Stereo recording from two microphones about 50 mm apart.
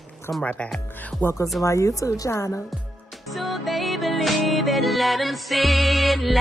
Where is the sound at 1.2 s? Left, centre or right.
Left.